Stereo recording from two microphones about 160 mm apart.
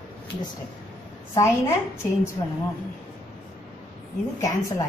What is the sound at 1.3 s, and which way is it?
A woman's voice, 15° left (ahead or behind).